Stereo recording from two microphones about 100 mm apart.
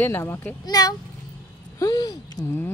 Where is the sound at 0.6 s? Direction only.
40° left (ahead or behind).